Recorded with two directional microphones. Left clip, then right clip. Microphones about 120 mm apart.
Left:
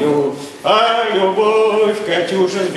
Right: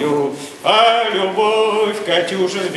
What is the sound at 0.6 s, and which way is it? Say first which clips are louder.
Speech: right 1 dB; 20° right (ahead or behind).